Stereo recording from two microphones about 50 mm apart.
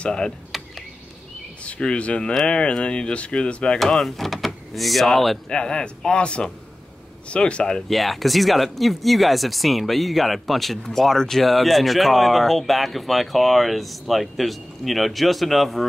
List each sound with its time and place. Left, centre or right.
0.0 s a man's voice: centre
0.5 s a sound: centre
1.6 s speech: left
3.8 s speech: centre
5.5 s a man's voice: centre
7.9 s speech: centre